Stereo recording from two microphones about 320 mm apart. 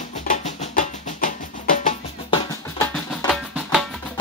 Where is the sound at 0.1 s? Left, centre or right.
Left.